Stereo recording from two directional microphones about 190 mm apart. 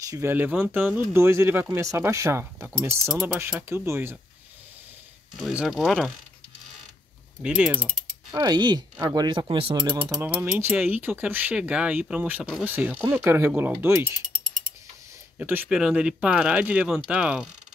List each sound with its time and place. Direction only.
0.1 s speech: 10° right (ahead or behind)
5.4 s speech: 5° right (ahead or behind)
7.4 s speech: 5° right (ahead or behind)
8.3 s speech: 20° right (ahead or behind)
15.3 s speech: 10° right (ahead or behind)